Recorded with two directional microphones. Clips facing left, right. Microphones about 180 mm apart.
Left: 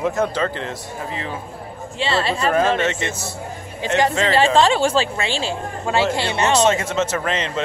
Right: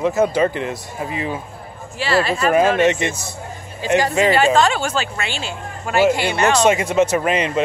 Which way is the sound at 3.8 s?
25° left (ahead or behind).